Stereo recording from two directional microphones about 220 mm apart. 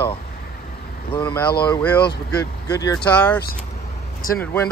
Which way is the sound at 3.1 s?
5° left (ahead or behind).